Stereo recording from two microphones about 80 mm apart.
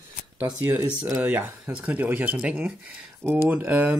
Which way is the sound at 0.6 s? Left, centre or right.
Right.